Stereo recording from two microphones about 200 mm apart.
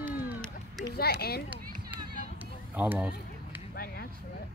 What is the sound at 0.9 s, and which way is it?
Speech, 50° left (ahead or behind).